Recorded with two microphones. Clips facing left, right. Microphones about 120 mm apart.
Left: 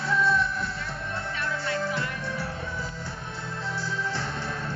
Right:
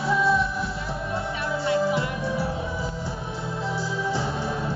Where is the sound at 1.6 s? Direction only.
20° right (ahead or behind).